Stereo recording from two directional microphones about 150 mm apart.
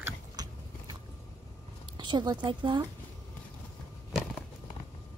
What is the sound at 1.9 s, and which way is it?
Speech, 30° right (ahead or behind).